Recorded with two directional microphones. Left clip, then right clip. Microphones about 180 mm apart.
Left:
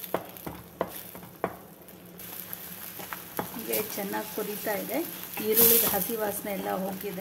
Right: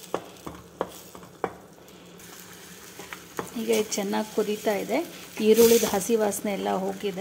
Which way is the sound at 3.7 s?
50° right (ahead or behind).